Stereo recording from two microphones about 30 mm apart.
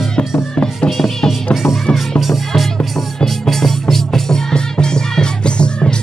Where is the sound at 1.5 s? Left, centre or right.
Centre.